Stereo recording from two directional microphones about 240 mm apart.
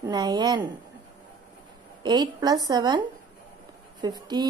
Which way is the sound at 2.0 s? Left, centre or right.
Centre.